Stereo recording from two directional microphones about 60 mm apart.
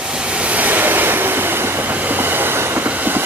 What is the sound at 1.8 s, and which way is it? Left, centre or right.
Train, right.